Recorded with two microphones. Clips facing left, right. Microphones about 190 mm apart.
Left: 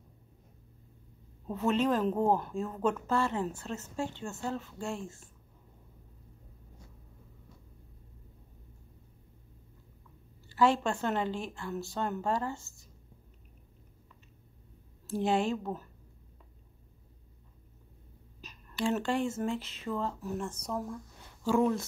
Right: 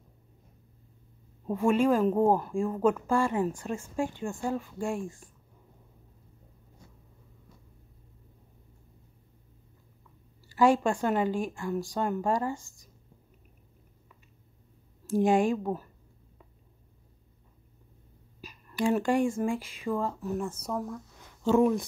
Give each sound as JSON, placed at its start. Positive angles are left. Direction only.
{"t": 1.5, "sound": "speech", "side_deg": -10}
{"t": 10.5, "sound": "speech", "side_deg": -10}
{"t": 15.0, "sound": "speech", "side_deg": -15}
{"t": 18.4, "sound": "speech", "side_deg": -10}